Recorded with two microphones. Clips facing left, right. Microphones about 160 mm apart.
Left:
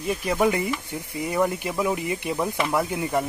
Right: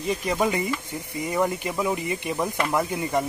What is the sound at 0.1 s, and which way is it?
Speech, 5° left (ahead or behind).